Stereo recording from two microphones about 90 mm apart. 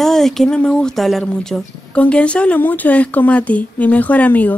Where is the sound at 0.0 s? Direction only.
5° left (ahead or behind).